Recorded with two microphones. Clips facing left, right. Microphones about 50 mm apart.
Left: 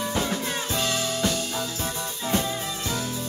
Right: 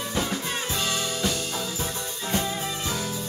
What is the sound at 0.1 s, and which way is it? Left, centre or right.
Music, centre.